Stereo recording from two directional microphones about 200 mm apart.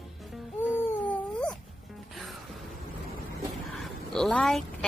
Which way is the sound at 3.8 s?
Centre (ahead or behind).